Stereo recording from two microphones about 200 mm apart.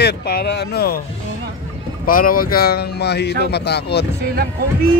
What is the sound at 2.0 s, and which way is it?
Speech, 45° left (ahead or behind).